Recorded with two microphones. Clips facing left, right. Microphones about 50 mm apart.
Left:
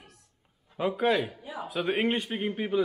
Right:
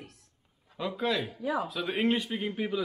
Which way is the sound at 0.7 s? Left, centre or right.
Left.